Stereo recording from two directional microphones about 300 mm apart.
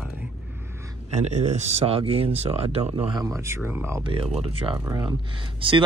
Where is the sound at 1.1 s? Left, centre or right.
Right.